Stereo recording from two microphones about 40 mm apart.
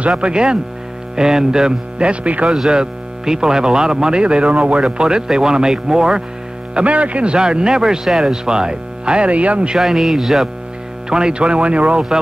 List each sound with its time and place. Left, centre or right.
0.2 s a man's voice: right
2.4 s speech: centre
2.7 s a man's voice: centre
6.7 s a man's voice: right
9.8 s speech: centre
11.1 s a man's voice: right